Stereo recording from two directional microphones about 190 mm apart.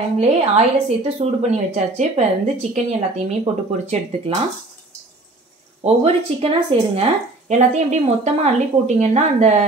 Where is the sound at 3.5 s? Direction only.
30° right (ahead or behind).